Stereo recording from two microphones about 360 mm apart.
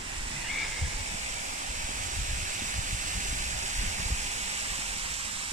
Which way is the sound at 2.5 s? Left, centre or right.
Right.